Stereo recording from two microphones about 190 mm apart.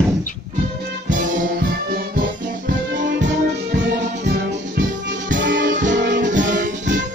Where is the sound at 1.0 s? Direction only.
50° right (ahead or behind).